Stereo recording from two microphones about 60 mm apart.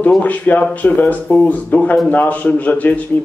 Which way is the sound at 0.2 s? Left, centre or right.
Left.